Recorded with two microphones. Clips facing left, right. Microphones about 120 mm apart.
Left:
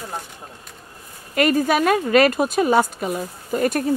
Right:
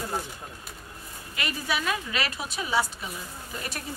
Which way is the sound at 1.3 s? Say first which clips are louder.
Left 14 dB; 50° left (ahead or behind).